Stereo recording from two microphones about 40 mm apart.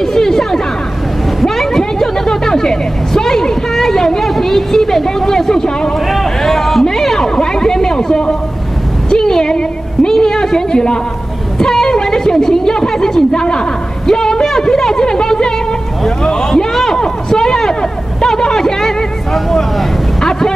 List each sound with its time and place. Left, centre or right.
0.0 s chatter: centre
1.4 s vehicle: centre
9.1 s a sound: centre
20.2 s vehicle: centre